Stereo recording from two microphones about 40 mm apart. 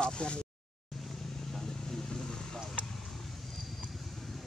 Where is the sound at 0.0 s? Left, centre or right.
Left.